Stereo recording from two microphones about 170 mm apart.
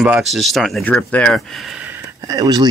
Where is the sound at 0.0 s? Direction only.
5° right (ahead or behind).